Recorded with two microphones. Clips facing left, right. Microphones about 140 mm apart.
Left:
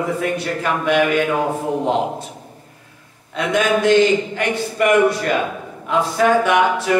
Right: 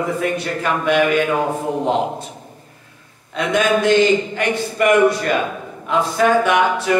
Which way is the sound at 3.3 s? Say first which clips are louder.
Right 1 dB; 10° left (ahead or behind).